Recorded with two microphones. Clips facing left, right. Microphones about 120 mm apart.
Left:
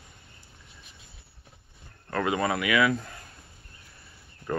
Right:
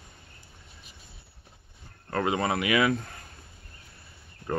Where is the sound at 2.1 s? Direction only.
30° right (ahead or behind).